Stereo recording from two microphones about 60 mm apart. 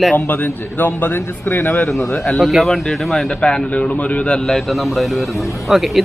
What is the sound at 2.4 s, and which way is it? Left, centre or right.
Speech, centre.